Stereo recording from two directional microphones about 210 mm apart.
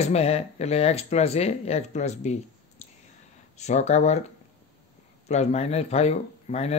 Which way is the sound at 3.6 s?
35° left (ahead or behind).